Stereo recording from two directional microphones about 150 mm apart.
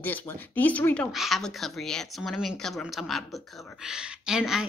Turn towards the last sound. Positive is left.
turn(degrees=-5)  # may be behind; listen again after turning